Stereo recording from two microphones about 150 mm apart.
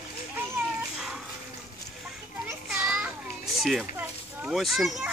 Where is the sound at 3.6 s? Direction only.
Centre (ahead or behind).